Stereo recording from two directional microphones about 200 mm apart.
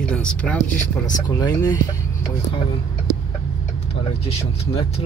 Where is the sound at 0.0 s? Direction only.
5° left (ahead or behind).